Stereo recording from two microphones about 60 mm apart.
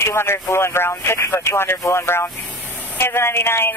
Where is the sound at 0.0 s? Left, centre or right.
Left.